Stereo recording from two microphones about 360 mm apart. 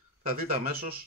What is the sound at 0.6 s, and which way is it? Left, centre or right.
Speech, right.